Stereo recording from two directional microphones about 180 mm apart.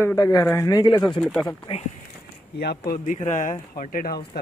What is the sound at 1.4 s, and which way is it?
Speech, 30° left (ahead or behind).